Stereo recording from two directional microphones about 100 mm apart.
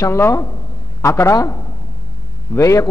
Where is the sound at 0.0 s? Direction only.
25° left (ahead or behind).